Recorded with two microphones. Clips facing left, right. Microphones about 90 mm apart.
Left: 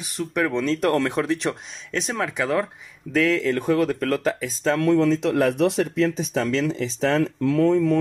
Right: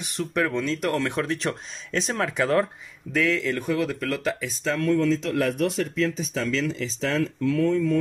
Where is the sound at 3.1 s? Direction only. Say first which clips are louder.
Left 3 dB; 30° left (ahead or behind).